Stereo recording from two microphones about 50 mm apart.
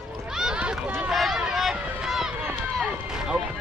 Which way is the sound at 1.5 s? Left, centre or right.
Centre.